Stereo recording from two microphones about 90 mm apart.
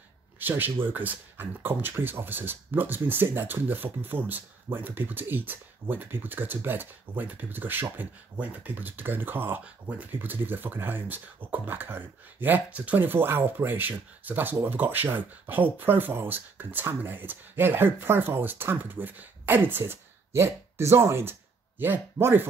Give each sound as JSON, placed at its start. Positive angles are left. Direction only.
{"t": 0.4, "sound": "speech", "side_deg": -25}